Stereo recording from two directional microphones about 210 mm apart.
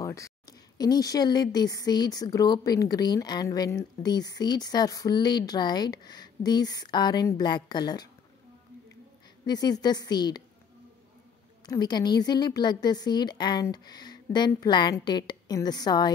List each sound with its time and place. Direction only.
0.0 s speech: 15° left (ahead or behind)
9.5 s speech: 20° left (ahead or behind)
11.6 s speech: 20° left (ahead or behind)